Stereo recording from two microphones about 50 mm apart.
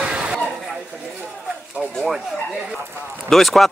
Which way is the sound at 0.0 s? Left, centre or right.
Right.